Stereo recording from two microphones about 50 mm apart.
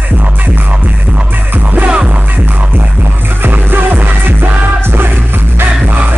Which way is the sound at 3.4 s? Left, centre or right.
Right.